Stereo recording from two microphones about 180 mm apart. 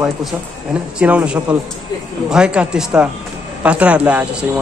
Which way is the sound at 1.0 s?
5° right (ahead or behind).